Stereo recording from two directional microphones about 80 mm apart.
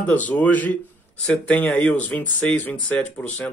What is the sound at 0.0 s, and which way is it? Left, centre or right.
Speech, centre.